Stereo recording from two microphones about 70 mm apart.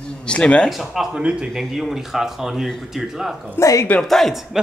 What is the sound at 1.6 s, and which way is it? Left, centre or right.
Speech, centre.